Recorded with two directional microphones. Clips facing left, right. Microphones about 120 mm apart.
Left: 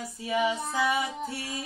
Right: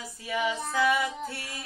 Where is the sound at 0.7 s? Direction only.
20° left (ahead or behind).